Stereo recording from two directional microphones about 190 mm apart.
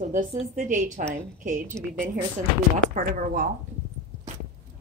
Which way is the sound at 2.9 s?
45° right (ahead or behind).